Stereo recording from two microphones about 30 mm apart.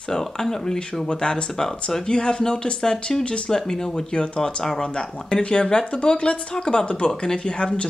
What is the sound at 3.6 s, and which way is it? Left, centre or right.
Speech, left.